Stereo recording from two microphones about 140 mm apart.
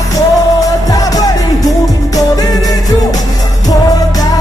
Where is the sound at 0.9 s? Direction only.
25° left (ahead or behind).